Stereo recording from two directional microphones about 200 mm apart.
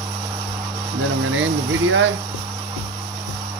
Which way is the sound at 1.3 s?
75° right (ahead or behind).